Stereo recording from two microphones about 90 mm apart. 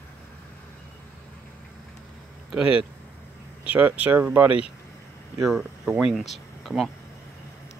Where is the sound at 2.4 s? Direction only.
10° right (ahead or behind).